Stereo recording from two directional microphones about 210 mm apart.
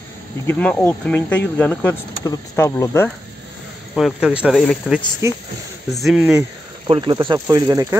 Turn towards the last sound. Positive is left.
turn(degrees=-15)  # may be behind; listen again after turning